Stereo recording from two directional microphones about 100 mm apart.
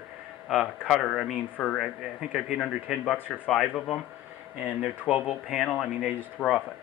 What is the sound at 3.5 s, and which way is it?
Speech, 5° left (ahead or behind).